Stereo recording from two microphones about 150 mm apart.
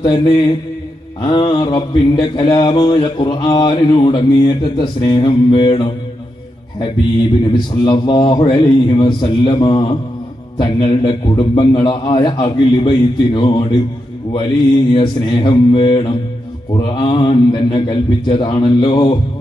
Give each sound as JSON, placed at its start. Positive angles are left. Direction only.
{"t": 0.0, "sound": "mantra", "side_deg": 30}
{"t": 7.7, "sound": "a man's voice", "side_deg": 30}
{"t": 8.5, "sound": "mantra", "side_deg": 30}
{"t": 15.0, "sound": "mantra", "side_deg": 35}